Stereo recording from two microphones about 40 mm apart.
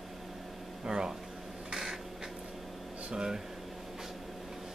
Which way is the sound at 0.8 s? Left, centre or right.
Centre.